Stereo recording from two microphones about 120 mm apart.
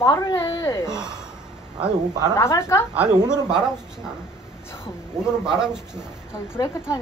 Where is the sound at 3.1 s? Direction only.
35° right (ahead or behind).